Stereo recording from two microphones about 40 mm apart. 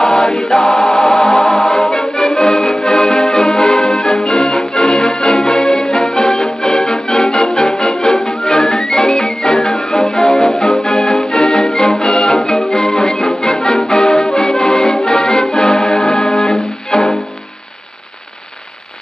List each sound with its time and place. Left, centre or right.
0.0 s music: centre
3.5 s music: centre
16.9 s music: centre